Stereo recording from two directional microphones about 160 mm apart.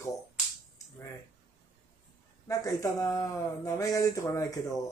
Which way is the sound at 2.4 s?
20° left (ahead or behind).